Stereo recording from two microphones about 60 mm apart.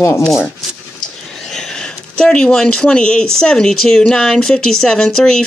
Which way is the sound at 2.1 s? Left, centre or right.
Centre.